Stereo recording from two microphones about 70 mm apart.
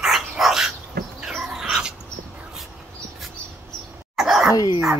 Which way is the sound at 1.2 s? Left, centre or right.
Centre.